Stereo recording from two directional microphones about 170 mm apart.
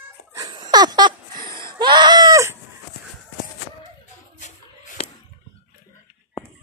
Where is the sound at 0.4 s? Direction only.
25° right (ahead or behind).